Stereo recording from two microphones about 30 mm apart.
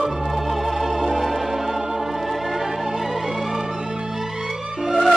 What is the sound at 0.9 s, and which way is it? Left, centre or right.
Organ, centre.